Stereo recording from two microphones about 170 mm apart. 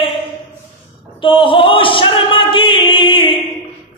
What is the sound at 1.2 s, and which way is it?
Singing, 30° left (ahead or behind).